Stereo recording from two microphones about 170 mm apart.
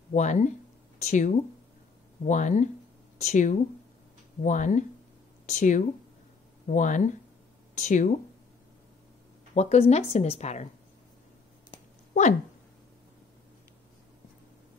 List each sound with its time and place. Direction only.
0.1 s speech: 45° left (ahead or behind)
9.5 s a woman's voice: 40° left (ahead or behind)
12.1 s speech: 45° left (ahead or behind)